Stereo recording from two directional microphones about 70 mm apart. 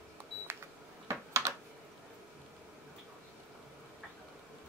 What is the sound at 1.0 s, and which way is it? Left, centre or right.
Computer keyboard, right.